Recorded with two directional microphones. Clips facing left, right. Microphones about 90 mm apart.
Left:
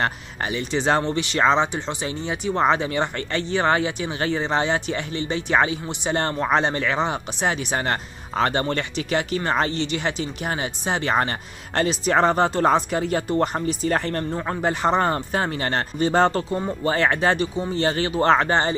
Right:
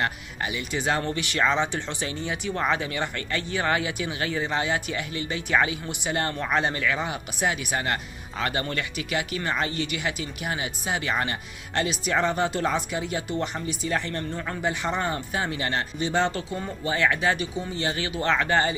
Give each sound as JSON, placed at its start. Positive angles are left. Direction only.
{"t": 0.0, "sound": "speech", "side_deg": 35}